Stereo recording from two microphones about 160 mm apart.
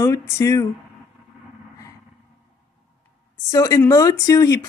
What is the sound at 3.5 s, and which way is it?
Speech, 20° left (ahead or behind).